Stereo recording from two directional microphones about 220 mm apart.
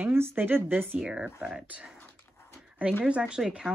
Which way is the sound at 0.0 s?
10° right (ahead or behind).